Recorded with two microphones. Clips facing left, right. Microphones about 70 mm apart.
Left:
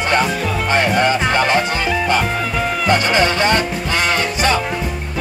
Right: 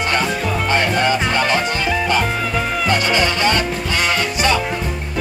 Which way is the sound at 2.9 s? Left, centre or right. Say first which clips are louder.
Left 3 dB; left.